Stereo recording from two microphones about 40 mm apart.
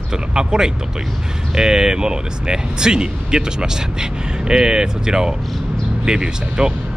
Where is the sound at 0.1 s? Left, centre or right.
Centre.